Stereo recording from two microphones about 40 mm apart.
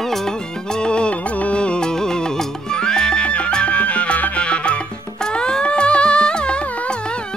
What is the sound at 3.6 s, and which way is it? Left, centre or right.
Music, left.